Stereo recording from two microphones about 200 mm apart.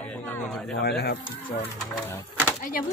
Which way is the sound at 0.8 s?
55° left (ahead or behind).